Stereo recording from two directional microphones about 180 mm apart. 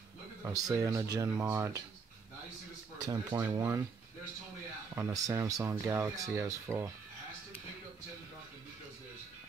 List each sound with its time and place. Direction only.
0.4 s speech: 20° right (ahead or behind)
3.3 s speech: 15° right (ahead or behind)
4.9 s speech: 15° right (ahead or behind)